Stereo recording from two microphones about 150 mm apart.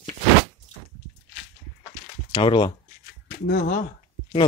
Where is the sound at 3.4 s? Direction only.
90° left.